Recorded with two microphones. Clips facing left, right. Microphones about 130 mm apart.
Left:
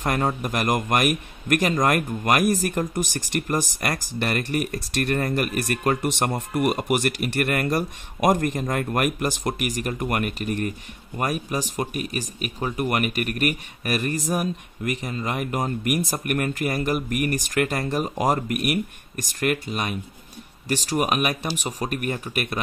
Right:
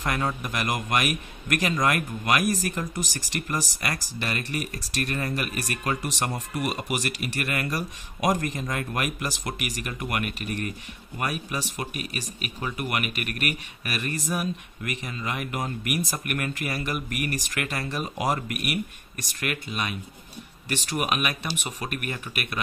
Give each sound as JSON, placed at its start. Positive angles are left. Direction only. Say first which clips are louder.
{"t": 0.0, "sound": "speech", "louder": "left 4 dB", "side_deg": 40}